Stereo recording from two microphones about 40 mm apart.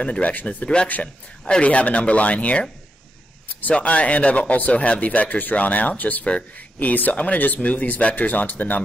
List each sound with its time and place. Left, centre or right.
0.2 s speech: left
1.0 s speech: centre
1.6 s speech: left
3.7 s speech: left
6.2 s speech: left